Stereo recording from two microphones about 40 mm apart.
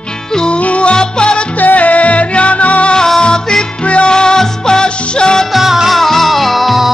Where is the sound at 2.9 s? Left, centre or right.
Centre.